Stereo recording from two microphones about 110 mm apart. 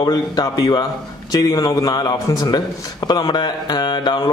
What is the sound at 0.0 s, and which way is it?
Speech, 40° left (ahead or behind).